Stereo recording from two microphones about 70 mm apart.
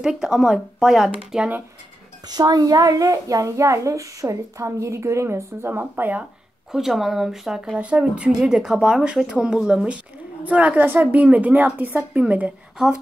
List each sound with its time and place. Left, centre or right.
0.0 s speech: centre
2.2 s a child's voice: right
6.7 s a woman's voice: centre; by 12.5 s right
12.7 s speech: centre